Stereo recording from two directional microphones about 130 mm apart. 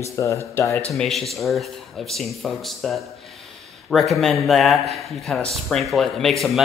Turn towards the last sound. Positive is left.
turn(degrees=0)  # may be behind; listen again after turning